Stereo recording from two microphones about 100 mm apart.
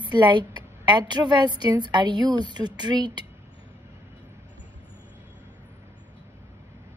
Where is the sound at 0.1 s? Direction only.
50° right (ahead or behind).